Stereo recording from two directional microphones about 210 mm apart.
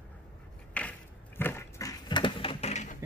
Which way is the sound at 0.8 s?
10° left (ahead or behind).